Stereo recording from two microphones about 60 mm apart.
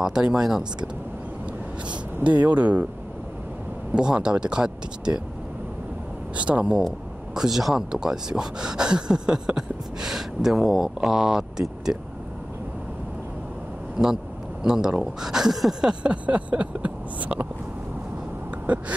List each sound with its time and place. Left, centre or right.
0.0 s speech: centre
2.2 s speech: right
3.9 s speech: centre
6.3 s speech: right
7.3 s speech: centre
14.0 s speech: centre
15.9 s speech: centre